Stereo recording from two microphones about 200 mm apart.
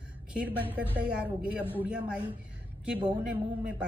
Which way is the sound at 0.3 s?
5° right (ahead or behind).